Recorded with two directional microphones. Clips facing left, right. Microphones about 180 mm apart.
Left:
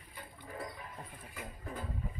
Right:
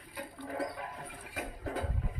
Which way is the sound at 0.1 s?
70° right (ahead or behind).